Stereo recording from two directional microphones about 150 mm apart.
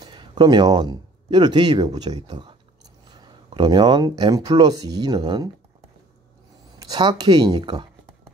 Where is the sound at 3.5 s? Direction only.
30° right (ahead or behind).